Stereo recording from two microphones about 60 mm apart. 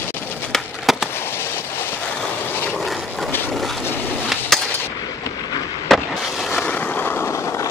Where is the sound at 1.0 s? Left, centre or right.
Left.